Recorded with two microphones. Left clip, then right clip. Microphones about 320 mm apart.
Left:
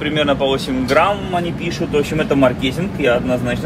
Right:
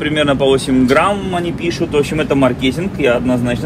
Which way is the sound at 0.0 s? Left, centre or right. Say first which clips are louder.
Right 3 dB; right.